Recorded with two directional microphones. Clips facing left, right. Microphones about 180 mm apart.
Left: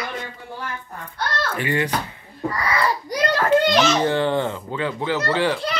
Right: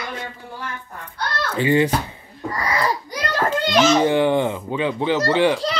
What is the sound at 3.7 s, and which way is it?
A child's voice, 15° right (ahead or behind).